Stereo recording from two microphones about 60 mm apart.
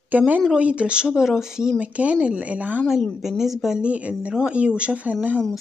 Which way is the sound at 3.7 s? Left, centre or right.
Right.